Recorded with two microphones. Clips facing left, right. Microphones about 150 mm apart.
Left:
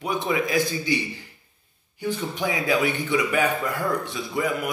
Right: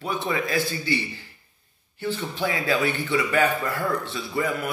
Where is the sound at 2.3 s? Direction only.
15° left (ahead or behind).